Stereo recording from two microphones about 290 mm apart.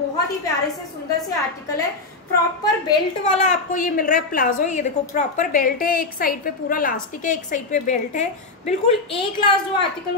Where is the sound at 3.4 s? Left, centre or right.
Left.